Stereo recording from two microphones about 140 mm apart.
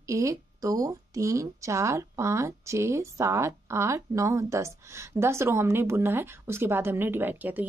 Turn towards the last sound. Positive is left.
turn(degrees=-10)  # may be behind; listen again after turning